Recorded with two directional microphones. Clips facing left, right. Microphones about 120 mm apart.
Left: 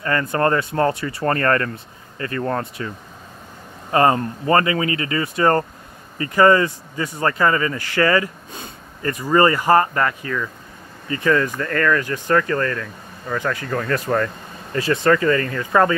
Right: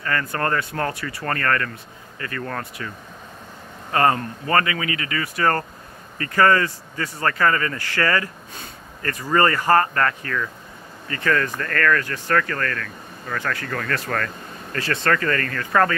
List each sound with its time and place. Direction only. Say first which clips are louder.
0.0 s speech: left 5 dB; 25° left (ahead or behind)
3.9 s speech: left 3 dB; 25° left (ahead or behind)